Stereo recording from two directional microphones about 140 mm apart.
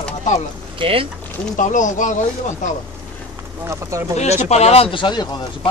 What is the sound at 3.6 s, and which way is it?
Speech, 20° right (ahead or behind).